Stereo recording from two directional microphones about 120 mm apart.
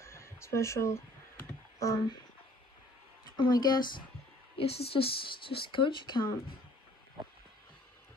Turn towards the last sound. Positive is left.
turn(degrees=40)  # may be behind; listen again after turning